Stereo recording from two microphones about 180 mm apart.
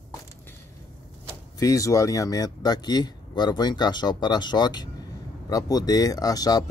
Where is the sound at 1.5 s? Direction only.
20° left (ahead or behind).